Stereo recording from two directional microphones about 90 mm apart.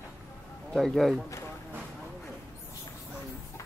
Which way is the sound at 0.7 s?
5° left (ahead or behind).